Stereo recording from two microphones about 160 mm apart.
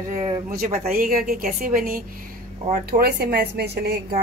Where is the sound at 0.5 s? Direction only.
65° right (ahead or behind).